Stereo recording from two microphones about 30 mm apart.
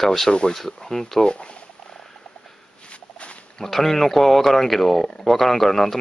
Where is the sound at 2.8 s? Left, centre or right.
Left.